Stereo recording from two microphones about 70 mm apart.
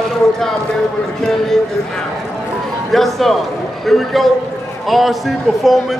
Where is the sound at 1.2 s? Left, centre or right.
Centre.